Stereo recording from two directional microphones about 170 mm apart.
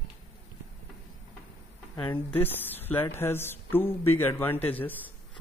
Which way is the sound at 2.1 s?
10° left (ahead or behind).